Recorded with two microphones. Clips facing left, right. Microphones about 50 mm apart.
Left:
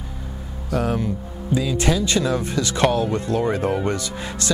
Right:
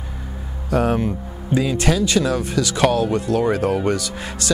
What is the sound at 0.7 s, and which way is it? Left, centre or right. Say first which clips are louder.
Speech: right 4 dB; centre.